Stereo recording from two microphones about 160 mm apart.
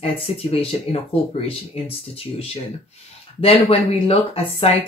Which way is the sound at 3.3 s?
35° left (ahead or behind).